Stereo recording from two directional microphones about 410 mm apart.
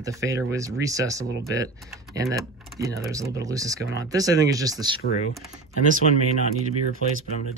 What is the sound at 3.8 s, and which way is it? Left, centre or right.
Speech, right.